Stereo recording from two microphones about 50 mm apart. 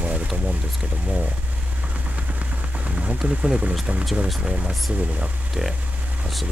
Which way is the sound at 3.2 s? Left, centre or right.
Centre.